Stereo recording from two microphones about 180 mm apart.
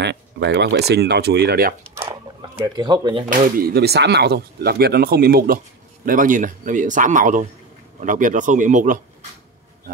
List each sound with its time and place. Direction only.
0.0 s speech: 70° right (ahead or behind)
2.6 s speech: 25° right (ahead or behind)
3.3 s speech: 55° right (ahead or behind)
6.0 s speech: 45° right (ahead or behind)